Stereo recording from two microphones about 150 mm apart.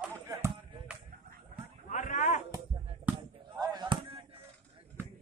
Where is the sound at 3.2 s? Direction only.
25° right (ahead or behind).